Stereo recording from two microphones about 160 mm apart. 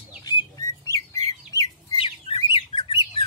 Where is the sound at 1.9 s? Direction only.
35° left (ahead or behind).